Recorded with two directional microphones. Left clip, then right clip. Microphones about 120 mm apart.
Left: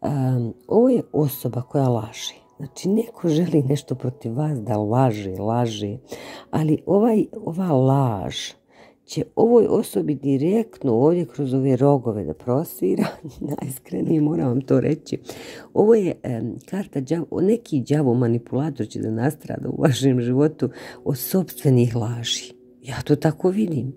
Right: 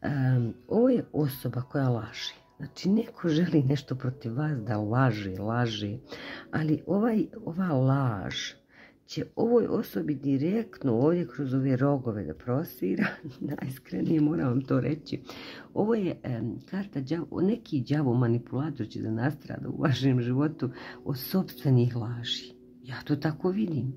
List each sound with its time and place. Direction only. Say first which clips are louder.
0.0 s a sound: left 7 dB; 35° left (ahead or behind)
0.7 s speech: left 7 dB; 30° left (ahead or behind)
6.2 s speech: left 7 dB; 45° left (ahead or behind)